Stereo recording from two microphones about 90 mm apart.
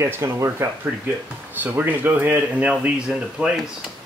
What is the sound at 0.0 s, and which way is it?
Speech, 30° right (ahead or behind).